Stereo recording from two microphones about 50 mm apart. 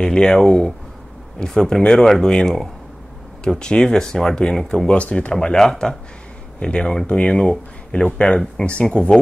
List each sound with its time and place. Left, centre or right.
0.0 s speech: centre
3.4 s speech: centre
4.8 s speech: left
5.3 s speech: centre